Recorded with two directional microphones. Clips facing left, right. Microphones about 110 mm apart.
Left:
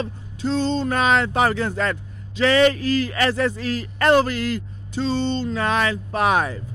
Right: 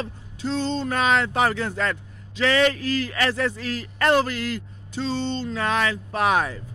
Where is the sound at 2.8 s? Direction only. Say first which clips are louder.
Left 4 dB; 20° left (ahead or behind).